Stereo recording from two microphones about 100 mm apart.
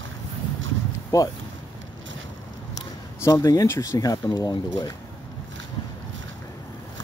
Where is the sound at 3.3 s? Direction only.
30° left (ahead or behind).